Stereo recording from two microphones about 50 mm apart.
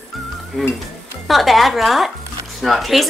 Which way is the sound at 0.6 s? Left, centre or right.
Centre.